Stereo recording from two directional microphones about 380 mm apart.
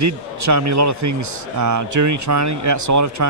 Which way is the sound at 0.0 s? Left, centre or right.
Right.